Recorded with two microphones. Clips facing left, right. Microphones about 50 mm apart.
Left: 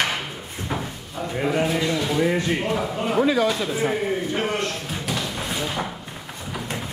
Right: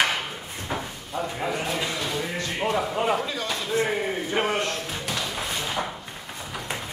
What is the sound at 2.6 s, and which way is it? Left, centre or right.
Speech, centre.